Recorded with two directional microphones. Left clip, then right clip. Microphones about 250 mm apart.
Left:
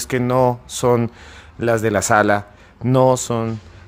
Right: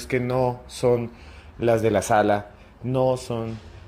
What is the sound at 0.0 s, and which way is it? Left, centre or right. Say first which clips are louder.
Speech: left 6 dB; centre.